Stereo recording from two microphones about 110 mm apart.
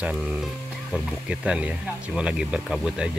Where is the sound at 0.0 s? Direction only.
10° right (ahead or behind).